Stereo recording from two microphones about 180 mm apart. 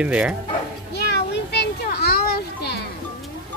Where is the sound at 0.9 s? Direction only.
70° left (ahead or behind).